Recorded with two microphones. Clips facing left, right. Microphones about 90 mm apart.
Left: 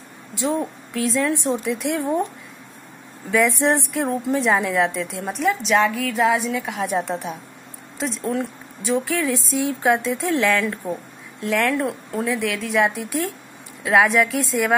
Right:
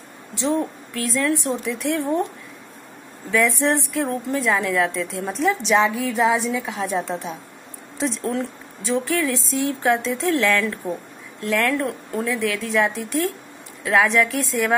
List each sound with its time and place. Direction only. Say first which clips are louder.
0.4 s a woman's voice: right 1 dB; 10° left (ahead or behind)
3.3 s a woman's voice: left 1 dB; 15° left (ahead or behind)
5.4 s a woman's voice: even; centre (ahead or behind)
6.8 s a woman's voice: left 1 dB; 15° left (ahead or behind)
8.0 s a woman's voice: even; 5° left (ahead or behind)